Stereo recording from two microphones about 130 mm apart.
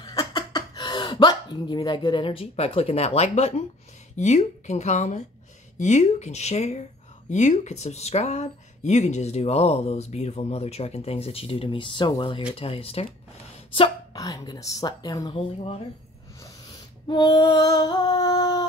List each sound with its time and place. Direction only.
0.0 s speech: 35° left (ahead or behind); by 6.8 s 60° left (ahead or behind)
7.2 s speech: 70° left (ahead or behind); by 13.0 s 50° left (ahead or behind)
14.1 s female singing: 30° left (ahead or behind)
17.1 s female singing: 35° left (ahead or behind)